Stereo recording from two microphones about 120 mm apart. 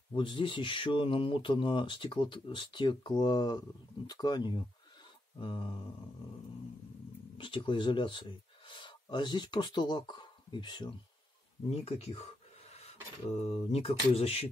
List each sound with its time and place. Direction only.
0.1 s speech: 45° left (ahead or behind)
7.3 s speech: 45° left (ahead or behind)
11.8 s a sound: 60° left (ahead or behind)
13.3 s speech: 55° left (ahead or behind)